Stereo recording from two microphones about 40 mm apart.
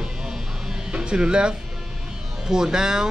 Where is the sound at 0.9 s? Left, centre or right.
Right.